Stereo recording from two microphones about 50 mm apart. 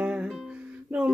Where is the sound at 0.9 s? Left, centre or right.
Centre.